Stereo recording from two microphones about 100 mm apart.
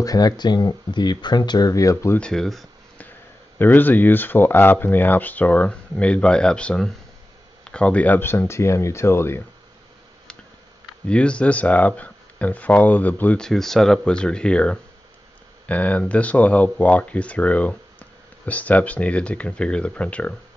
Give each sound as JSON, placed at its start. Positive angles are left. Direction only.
{"t": 0.0, "sound": "speech", "side_deg": 40}
{"t": 1.7, "sound": "speech", "side_deg": 35}
{"t": 2.1, "sound": "speech", "side_deg": 5}
{"t": 3.5, "sound": "speech", "side_deg": 20}
{"t": 11.1, "sound": "speech", "side_deg": 10}
{"t": 13.4, "sound": "speech", "side_deg": 5}